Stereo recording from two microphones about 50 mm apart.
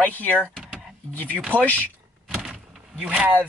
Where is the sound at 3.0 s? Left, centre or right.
Right.